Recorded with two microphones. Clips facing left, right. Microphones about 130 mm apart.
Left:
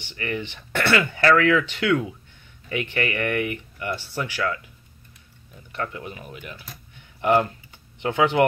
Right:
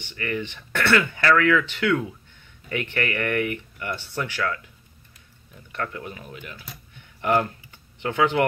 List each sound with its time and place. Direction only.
0.1 s speech: 25° left (ahead or behind)
5.8 s speech: 20° left (ahead or behind)